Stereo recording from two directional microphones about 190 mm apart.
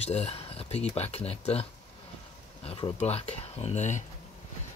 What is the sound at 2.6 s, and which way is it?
Speech, 30° left (ahead or behind).